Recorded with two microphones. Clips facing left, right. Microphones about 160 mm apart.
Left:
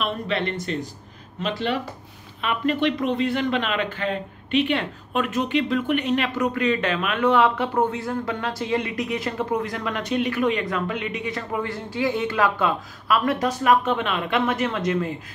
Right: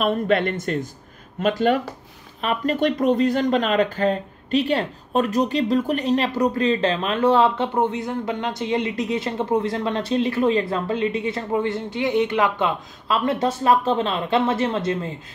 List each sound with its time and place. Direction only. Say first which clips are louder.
0.0 s speech: right 6 dB; 50° right (ahead or behind); by 15.1 s 30° right (ahead or behind)